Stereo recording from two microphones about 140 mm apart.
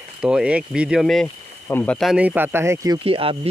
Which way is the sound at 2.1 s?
10° right (ahead or behind).